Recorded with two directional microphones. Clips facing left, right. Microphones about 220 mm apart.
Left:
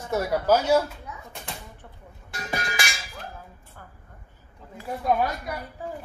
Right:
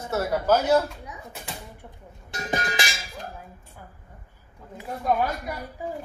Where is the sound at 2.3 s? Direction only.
20° right (ahead or behind).